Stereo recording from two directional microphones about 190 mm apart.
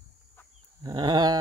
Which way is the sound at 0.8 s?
20° right (ahead or behind).